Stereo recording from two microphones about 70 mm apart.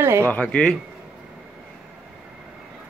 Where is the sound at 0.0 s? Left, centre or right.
Right.